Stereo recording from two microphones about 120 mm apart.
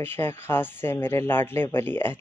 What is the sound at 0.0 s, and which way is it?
Speech, 20° left (ahead or behind).